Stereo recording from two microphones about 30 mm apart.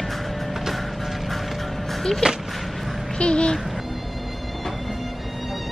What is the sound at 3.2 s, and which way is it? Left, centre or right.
Speech, left.